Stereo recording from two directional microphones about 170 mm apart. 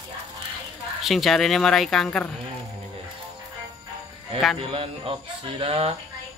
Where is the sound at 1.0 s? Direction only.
Centre (ahead or behind).